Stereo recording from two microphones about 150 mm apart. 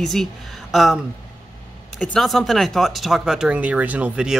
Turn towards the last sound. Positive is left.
turn(degrees=-5)  # may be behind; listen again after turning